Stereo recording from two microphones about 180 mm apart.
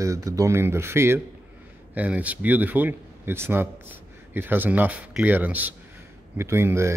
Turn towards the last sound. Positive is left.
turn(degrees=-15)  # may be behind; listen again after turning